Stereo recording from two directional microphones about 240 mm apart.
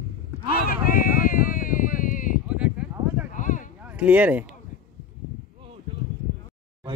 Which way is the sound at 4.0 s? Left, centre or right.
Centre.